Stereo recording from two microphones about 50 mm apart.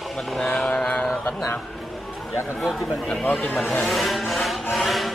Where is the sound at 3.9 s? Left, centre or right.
Centre.